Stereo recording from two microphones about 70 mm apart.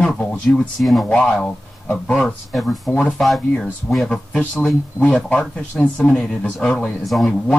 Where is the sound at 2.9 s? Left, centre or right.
Centre.